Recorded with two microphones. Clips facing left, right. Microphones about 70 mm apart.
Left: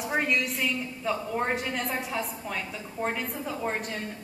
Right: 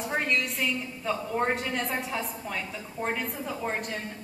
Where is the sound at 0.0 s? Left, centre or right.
Centre.